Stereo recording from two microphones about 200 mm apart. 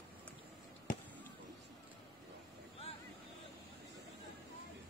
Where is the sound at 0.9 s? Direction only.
40° left (ahead or behind).